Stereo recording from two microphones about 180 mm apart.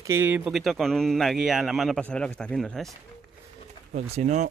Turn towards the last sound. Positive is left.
turn(degrees=-35)  # may be behind; listen again after turning